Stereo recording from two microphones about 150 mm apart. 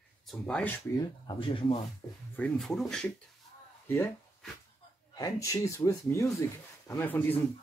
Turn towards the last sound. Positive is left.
turn(degrees=10)  # may be behind; listen again after turning